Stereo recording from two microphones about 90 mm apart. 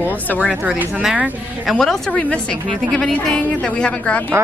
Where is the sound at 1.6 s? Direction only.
Centre (ahead or behind).